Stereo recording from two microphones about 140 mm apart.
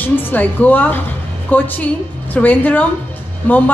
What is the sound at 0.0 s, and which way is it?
A woman's voice, 15° left (ahead or behind).